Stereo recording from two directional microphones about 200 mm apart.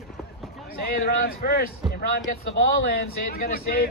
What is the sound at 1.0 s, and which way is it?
Speech, 50° left (ahead or behind).